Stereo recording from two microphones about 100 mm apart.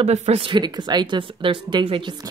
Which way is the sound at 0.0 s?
90° right.